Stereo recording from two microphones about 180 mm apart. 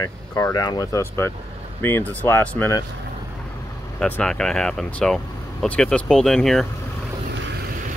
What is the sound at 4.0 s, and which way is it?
Speech, 5° left (ahead or behind).